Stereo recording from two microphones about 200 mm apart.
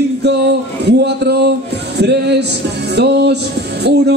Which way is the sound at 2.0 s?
55° right (ahead or behind).